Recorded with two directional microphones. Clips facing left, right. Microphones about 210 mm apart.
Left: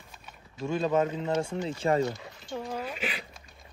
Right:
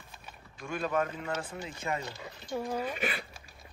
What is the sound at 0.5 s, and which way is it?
Speech, 25° left (ahead or behind).